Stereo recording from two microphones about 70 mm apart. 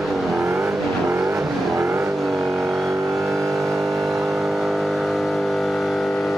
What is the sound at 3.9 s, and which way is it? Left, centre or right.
Vehicle, centre.